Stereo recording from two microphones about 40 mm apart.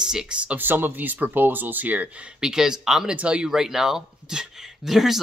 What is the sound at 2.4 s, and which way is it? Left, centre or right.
Speech, centre.